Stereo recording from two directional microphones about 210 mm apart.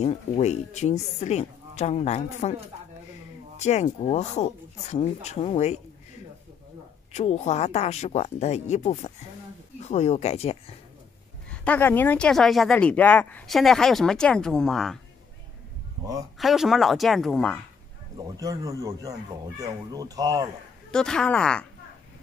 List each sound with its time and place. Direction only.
0.0 s a woman's voice: 30° left (ahead or behind)
3.5 s a woman's voice: 30° left (ahead or behind)
7.1 s a woman's voice: 35° left (ahead or behind)
11.6 s speech: 10° left (ahead or behind)
16.3 s speech: centre (ahead or behind)
18.1 s speech: 15° right (ahead or behind)
20.9 s speech: 5° left (ahead or behind)